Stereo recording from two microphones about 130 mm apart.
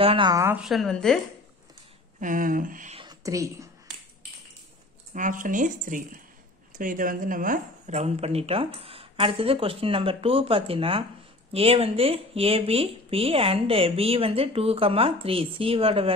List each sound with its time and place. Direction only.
0.0 s a woman's voice: 45° right (ahead or behind)
0.3 s speech: 25° right (ahead or behind)
0.6 s a woman's voice: centre (ahead or behind)
2.1 s speech: 85° right
3.1 s a sound: 25° right (ahead or behind)
5.1 s a woman's voice: 85° right; by 16.2 s 45° right (ahead or behind)